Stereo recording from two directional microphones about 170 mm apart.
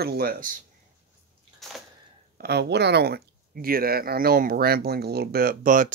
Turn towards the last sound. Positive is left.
turn(degrees=-50)  # may be behind; listen again after turning